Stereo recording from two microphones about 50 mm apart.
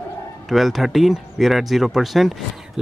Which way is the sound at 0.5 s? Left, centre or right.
Centre.